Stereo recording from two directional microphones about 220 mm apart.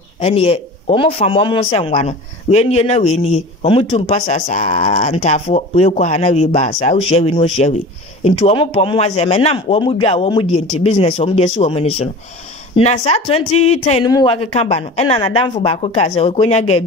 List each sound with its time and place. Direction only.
0.2 s a man's voice: 25° left (ahead or behind)